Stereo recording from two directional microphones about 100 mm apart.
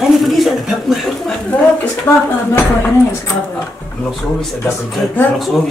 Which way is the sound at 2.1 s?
25° left (ahead or behind).